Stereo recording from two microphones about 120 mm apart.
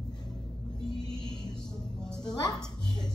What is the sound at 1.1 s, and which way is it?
Music, 5° left (ahead or behind).